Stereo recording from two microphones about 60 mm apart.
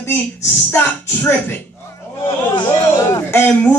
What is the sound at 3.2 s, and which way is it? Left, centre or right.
Speech, left.